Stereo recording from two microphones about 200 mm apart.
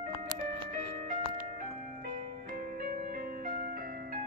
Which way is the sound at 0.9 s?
40° right (ahead or behind).